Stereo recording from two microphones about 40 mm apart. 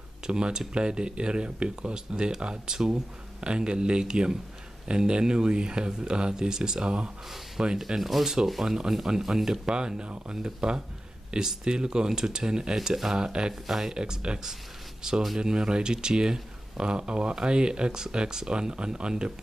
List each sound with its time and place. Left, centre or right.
0.3 s speech: centre
7.8 s speech: centre
9.7 s speech: right
13.2 s speech: right
13.5 s speech: centre
13.9 s speech: right